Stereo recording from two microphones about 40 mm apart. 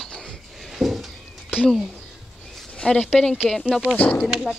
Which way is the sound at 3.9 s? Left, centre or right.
Centre.